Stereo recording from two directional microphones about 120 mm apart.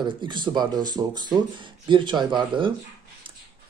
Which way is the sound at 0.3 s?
40° right (ahead or behind).